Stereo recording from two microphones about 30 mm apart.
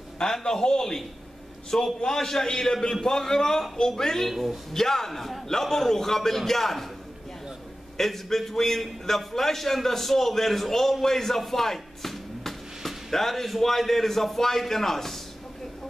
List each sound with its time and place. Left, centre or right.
0.2 s a man's voice: left
2.4 s a man's voice: left
4.3 s speech: centre
4.7 s a man's voice: centre
8.0 s a man's voice: centre